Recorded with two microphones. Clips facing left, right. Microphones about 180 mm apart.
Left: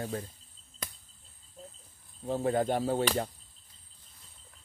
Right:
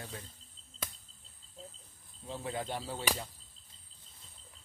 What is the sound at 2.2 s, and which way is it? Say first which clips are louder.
Speech: left 10 dB; 50° left (ahead or behind).